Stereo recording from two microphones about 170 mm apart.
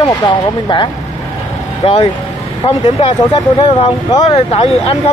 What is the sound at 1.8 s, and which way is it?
Speech, 30° left (ahead or behind).